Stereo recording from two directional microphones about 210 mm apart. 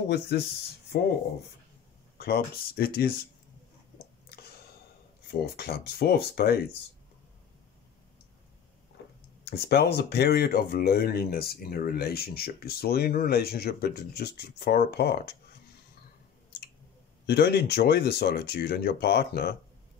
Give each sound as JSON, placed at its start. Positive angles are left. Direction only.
{"t": 0.1, "sound": "speech", "side_deg": 50}
{"t": 2.1, "sound": "speech", "side_deg": 50}
{"t": 4.3, "sound": "a sound", "side_deg": 50}
{"t": 5.3, "sound": "speech", "side_deg": 50}
{"t": 9.5, "sound": "speech", "side_deg": 50}
{"t": 17.3, "sound": "speech", "side_deg": 50}